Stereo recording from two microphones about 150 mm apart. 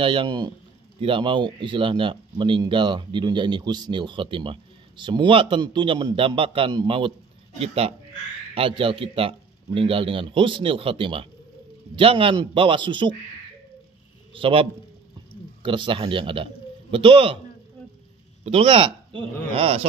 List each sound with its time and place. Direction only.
0.0 s speech: 35° right (ahead or behind)
7.5 s speech: 40° right (ahead or behind)
14.3 s speech: 35° right (ahead or behind)
18.4 s speech: 40° right (ahead or behind)